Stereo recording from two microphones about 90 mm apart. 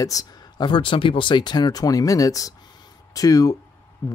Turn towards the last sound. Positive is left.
turn(degrees=20)  # may be behind; listen again after turning